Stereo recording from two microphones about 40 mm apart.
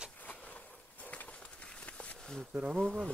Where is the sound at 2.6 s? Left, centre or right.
Right.